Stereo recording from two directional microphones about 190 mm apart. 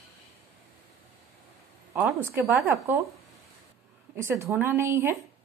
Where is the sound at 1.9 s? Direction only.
10° right (ahead or behind).